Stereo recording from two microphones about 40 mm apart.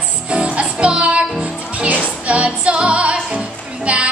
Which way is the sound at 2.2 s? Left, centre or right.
Right.